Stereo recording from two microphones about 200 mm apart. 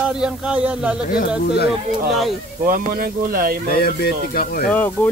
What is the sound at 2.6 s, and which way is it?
Speech, 45° right (ahead or behind).